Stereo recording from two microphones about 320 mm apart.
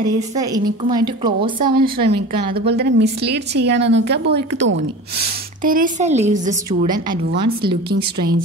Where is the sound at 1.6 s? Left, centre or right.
Right.